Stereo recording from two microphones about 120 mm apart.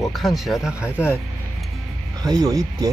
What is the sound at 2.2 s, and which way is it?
Speech, 30° right (ahead or behind).